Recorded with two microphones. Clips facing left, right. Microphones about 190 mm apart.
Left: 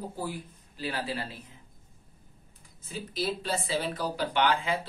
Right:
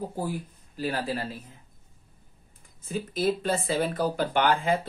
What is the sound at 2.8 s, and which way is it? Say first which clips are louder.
Speech: right 5 dB; 50° right (ahead or behind).